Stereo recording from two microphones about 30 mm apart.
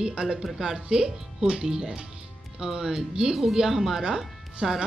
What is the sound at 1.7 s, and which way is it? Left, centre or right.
Speech, right.